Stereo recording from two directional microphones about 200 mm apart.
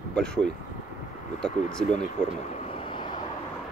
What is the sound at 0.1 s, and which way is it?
Speech, 5° left (ahead or behind).